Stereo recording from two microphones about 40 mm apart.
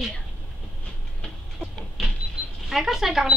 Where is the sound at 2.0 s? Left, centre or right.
Centre.